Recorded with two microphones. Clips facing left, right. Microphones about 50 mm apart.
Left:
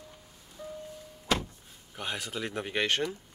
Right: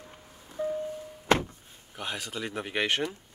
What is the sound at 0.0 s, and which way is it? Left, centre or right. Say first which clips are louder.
Music: right 2 dB; right.